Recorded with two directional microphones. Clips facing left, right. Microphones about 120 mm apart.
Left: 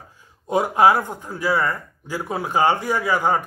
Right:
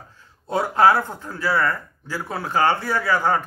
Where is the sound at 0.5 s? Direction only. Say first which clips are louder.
Left 1 dB; 15° left (ahead or behind).